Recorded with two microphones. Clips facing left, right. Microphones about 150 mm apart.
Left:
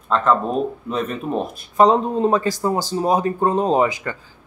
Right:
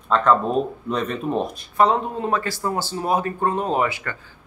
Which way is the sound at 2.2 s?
20° left (ahead or behind).